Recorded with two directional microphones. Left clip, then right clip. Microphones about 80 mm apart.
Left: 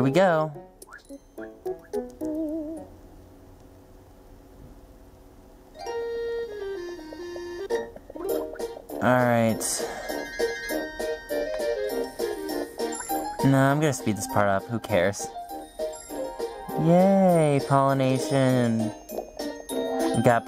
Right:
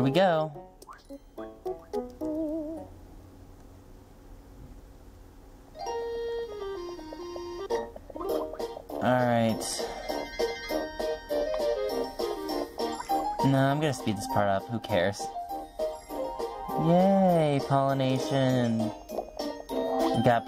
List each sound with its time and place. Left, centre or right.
0.0 s speech: centre
0.9 s music: left
5.8 s music: left
9.1 s speech: left
10.0 s music: left
13.5 s speech: centre
15.3 s music: left